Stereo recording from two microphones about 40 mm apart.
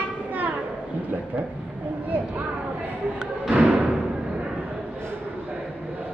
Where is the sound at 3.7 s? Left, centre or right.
Centre.